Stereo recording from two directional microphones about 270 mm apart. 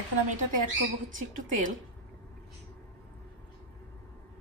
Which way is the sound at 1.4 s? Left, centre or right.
Right.